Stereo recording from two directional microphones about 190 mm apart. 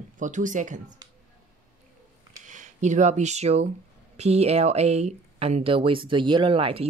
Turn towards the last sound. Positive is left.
turn(degrees=-30)  # may be behind; listen again after turning